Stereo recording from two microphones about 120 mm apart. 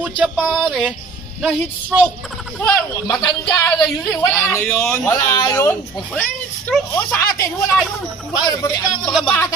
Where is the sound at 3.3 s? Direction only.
35° left (ahead or behind).